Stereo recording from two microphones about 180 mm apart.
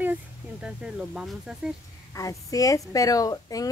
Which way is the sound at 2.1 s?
20° left (ahead or behind).